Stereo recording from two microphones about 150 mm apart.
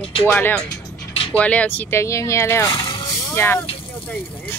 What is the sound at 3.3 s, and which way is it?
Speech, 15° left (ahead or behind).